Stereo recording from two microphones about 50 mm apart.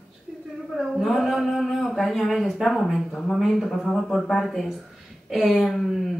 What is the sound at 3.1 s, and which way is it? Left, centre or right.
Speech, centre.